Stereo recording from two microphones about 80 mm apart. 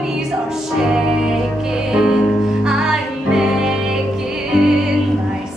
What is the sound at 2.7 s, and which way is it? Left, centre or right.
Music, centre.